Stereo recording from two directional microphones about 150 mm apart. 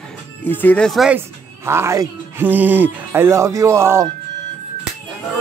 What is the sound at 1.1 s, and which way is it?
Speech, 15° right (ahead or behind).